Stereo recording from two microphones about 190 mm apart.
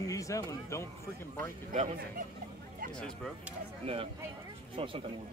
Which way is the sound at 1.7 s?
40° right (ahead or behind).